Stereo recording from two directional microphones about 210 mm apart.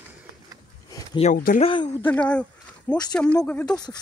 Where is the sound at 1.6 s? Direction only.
25° left (ahead or behind).